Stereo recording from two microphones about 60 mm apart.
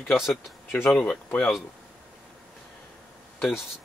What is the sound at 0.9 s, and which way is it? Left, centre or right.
Speech, left.